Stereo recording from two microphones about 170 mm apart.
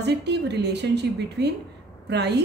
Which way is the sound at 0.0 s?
80° right.